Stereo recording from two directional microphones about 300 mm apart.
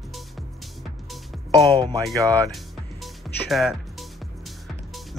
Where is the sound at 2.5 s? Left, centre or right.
Centre.